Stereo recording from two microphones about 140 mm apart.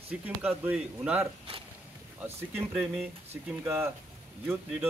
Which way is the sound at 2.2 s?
15° right (ahead or behind).